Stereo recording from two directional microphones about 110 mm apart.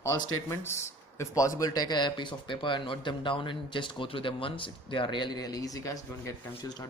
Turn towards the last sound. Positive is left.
turn(degrees=35)  # may be behind; listen again after turning